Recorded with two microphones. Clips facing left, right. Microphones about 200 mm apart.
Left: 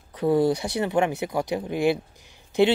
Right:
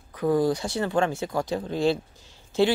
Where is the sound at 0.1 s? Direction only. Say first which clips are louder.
Left 2 dB; 25° left (ahead or behind).